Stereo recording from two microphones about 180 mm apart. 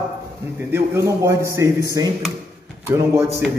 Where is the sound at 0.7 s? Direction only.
15° right (ahead or behind).